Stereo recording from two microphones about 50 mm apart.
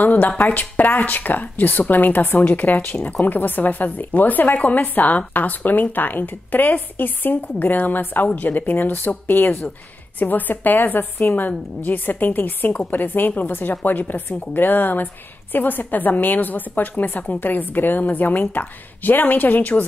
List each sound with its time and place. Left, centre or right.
0.0 s a woman's voice: left
10.1 s a woman's voice: left